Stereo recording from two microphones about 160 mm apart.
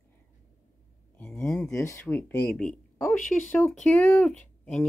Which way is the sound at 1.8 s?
15° left (ahead or behind).